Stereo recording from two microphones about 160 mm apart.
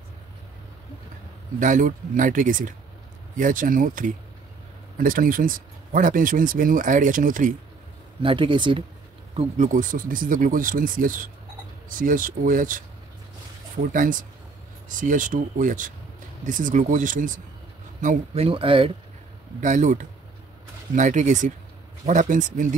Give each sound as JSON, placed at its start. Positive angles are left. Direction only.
{"t": 1.6, "sound": "speech", "side_deg": -55}
{"t": 8.2, "sound": "speech", "side_deg": -30}
{"t": 9.8, "sound": "speech", "side_deg": -60}
{"t": 13.9, "sound": "speech", "side_deg": -60}
{"t": 18.3, "sound": "speech", "side_deg": -35}
{"t": 19.6, "sound": "speech", "side_deg": -50}